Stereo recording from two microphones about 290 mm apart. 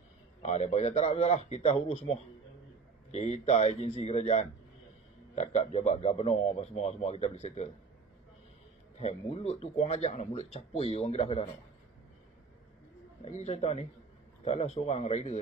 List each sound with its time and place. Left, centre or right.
0.4 s speech: left
9.0 s speech: left
13.2 s speech: left